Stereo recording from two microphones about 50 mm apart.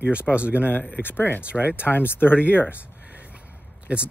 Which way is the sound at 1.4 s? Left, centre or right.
Right.